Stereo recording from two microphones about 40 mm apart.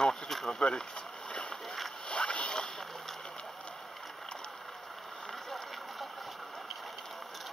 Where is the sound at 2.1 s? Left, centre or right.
Left.